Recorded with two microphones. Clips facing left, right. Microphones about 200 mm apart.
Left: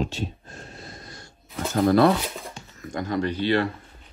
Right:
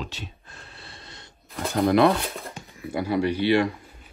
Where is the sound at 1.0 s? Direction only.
25° right (ahead or behind).